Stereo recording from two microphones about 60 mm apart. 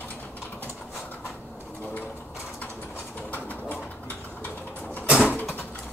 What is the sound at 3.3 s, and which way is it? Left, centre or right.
Bird, left.